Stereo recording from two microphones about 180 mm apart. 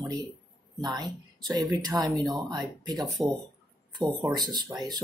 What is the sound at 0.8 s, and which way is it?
Speech, 25° right (ahead or behind).